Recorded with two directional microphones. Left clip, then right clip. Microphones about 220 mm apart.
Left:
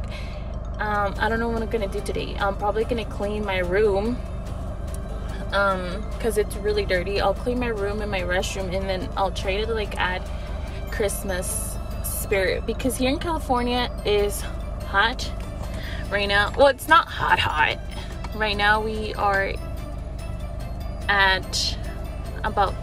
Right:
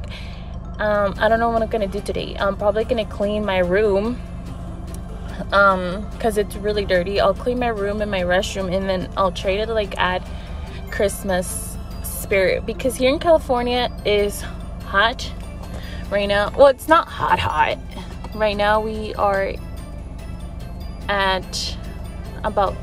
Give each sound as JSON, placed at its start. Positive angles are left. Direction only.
{"t": 0.7, "sound": "speech", "side_deg": -15}
{"t": 5.5, "sound": "speech", "side_deg": -20}
{"t": 21.1, "sound": "speech", "side_deg": -20}